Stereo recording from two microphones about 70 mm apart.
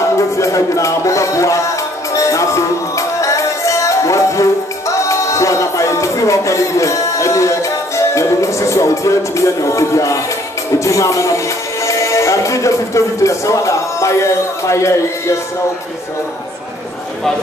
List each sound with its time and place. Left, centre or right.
0.4 s music: left